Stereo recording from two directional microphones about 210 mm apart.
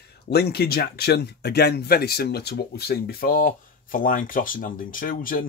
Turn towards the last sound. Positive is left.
turn(degrees=40)  # may be behind; listen again after turning